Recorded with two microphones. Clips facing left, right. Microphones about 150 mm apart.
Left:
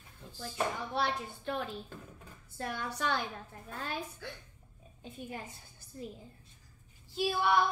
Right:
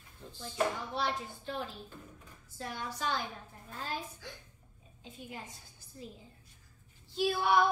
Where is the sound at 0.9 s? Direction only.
60° left (ahead or behind).